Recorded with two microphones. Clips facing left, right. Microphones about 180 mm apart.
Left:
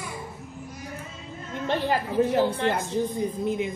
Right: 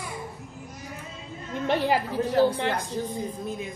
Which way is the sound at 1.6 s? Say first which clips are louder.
Right 2 dB; 15° right (ahead or behind).